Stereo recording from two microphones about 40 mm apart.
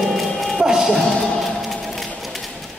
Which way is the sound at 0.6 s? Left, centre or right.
Centre.